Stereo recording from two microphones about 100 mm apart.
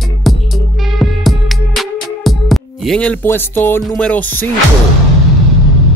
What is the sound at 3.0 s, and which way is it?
Speech, 15° left (ahead or behind).